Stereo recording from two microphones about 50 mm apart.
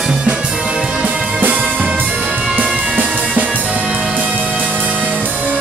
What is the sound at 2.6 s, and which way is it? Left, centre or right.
Music, right.